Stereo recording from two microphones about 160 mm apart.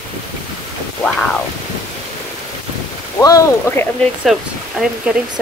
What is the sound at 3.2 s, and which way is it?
Speech, 20° left (ahead or behind).